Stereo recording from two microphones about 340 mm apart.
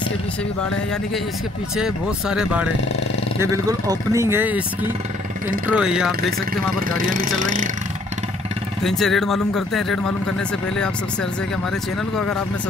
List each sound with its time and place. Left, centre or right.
1.8 s speech: centre
5.8 s speech: centre
7.0 s speech: right
8.8 s speech: centre